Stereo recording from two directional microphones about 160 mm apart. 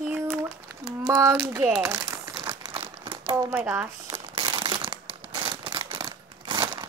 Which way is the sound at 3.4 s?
10° right (ahead or behind).